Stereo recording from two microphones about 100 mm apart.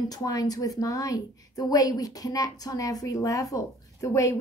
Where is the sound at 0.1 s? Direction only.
40° left (ahead or behind).